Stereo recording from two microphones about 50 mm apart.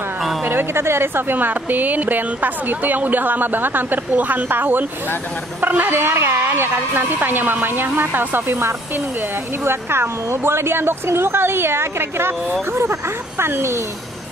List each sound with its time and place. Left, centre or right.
0.5 s a woman's voice: right